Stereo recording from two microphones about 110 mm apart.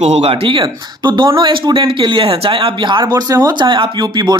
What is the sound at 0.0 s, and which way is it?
Speech, 70° right (ahead or behind).